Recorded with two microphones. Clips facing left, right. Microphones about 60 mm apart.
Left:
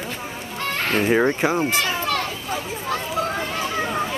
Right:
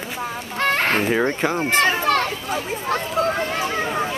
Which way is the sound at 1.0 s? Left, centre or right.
Centre.